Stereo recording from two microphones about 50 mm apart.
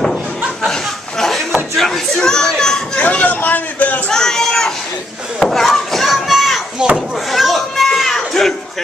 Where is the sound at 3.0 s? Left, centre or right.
Left.